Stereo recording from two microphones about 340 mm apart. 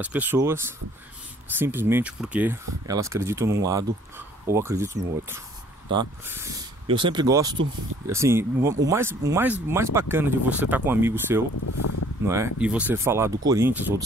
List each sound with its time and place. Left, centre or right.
0.0 s speech: centre
1.6 s speech: centre
11.6 s speech: left
12.3 s speech: centre